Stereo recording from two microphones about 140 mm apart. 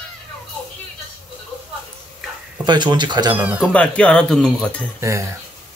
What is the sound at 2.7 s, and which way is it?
Speech, 30° right (ahead or behind).